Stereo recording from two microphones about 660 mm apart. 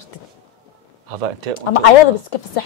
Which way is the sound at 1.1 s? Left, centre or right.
Right.